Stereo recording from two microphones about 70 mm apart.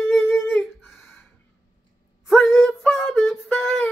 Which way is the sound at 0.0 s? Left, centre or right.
Left.